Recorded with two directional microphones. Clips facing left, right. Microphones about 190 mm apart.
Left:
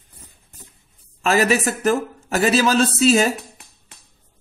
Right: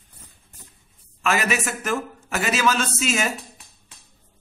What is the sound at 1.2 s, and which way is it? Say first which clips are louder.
A man's voice: left 6 dB; 35° left (ahead or behind).